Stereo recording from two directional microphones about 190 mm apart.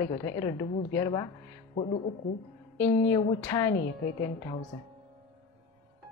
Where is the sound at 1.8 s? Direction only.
30° left (ahead or behind).